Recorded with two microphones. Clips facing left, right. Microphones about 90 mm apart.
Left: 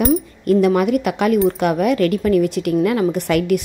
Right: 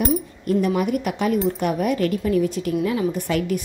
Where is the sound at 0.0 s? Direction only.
90° left.